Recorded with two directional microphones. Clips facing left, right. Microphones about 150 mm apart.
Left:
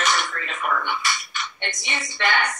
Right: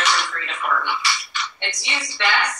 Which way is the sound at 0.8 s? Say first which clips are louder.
Right 1 dB; 50° left (ahead or behind).